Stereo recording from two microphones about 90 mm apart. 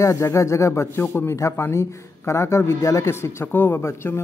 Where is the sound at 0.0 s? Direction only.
30° left (ahead or behind).